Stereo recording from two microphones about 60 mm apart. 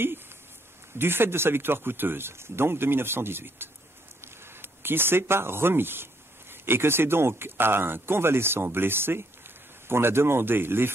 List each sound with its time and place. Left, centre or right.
0.9 s speech: right